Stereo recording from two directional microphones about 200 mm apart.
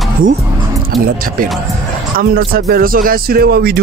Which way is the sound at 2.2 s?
50° right (ahead or behind).